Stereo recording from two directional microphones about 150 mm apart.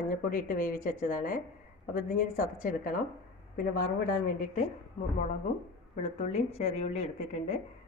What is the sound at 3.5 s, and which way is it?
Speech, 75° left (ahead or behind).